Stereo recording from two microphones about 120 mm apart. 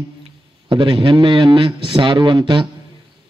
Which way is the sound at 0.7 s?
45° right (ahead or behind).